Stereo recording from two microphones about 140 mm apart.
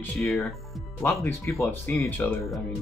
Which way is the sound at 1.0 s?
15° left (ahead or behind).